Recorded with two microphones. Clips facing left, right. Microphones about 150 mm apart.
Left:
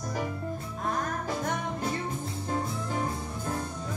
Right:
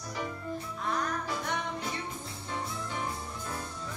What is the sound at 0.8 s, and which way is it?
Music, 45° left (ahead or behind).